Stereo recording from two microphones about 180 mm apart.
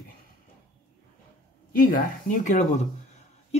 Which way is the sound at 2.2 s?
45° left (ahead or behind).